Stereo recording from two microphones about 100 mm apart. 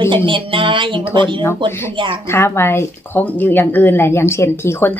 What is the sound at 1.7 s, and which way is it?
A woman's voice, 25° left (ahead or behind).